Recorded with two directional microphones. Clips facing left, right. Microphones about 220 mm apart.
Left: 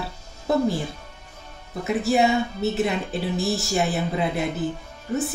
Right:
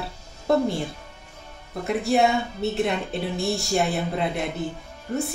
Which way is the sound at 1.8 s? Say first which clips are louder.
Even; centre (ahead or behind).